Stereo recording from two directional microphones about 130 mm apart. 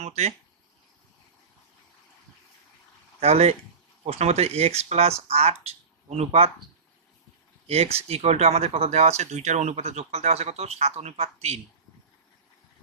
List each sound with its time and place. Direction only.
0.0 s a sound: 55° right (ahead or behind)
3.2 s speech: 55° right (ahead or behind)
7.6 s speech: 50° right (ahead or behind)